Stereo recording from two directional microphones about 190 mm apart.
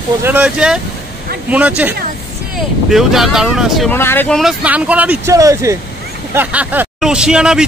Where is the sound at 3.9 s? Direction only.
10° left (ahead or behind).